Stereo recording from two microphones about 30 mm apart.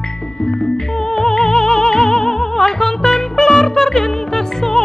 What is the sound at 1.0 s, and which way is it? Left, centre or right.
Music, centre.